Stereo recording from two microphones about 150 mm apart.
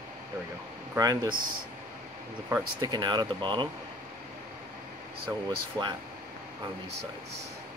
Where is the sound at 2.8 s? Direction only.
30° right (ahead or behind).